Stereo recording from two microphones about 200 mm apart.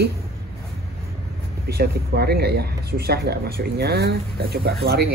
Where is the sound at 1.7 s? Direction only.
50° right (ahead or behind).